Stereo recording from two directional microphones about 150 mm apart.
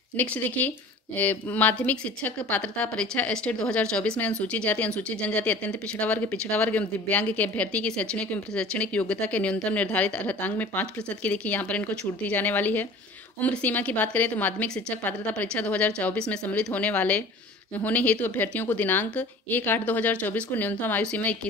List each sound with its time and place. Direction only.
0.2 s a woman's voice: 10° left (ahead or behind)